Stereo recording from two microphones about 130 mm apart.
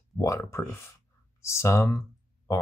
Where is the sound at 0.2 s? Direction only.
20° left (ahead or behind).